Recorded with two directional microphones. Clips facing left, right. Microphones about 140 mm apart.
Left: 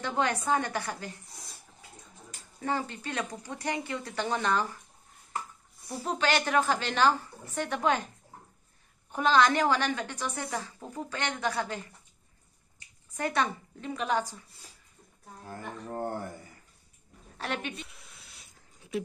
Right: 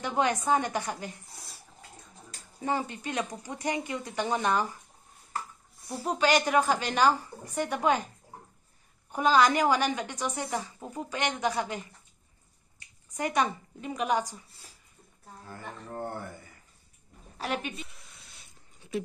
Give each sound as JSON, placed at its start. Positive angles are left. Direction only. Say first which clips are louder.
{"t": 0.0, "sound": "a woman's voice", "louder": "right 2 dB", "side_deg": -15}
{"t": 2.6, "sound": "a woman's voice", "louder": "right 1 dB", "side_deg": -15}
{"t": 5.9, "sound": "a woman's voice", "louder": "right 3 dB", "side_deg": -10}
{"t": 9.1, "sound": "a woman's voice", "louder": "right 1 dB", "side_deg": -10}
{"t": 13.1, "sound": "a woman's voice", "louder": "right 1 dB", "side_deg": -15}
{"t": 15.9, "sound": "speech", "louder": "left 3 dB", "side_deg": 40}
{"t": 17.4, "sound": "a sound", "louder": "right 2 dB", "side_deg": -10}